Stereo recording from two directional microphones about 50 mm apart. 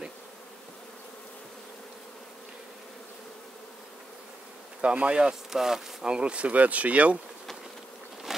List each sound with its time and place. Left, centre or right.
4.8 s speech: right
8.3 s insect: centre